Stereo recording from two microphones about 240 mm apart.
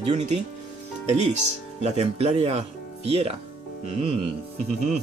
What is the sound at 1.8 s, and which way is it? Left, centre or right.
Speech, right.